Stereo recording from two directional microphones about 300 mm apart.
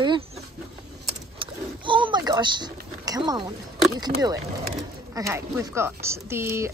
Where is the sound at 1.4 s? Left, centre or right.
Centre.